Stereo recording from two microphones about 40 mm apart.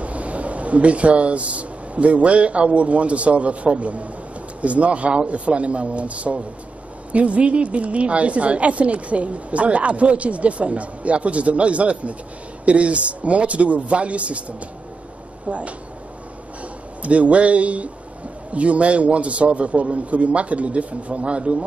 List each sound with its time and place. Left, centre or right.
0.0 s a woman's voice: right
15.5 s a woman's voice: right
17.0 s a woman's voice: right